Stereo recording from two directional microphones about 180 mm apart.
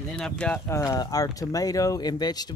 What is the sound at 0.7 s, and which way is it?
Speech, 20° left (ahead or behind).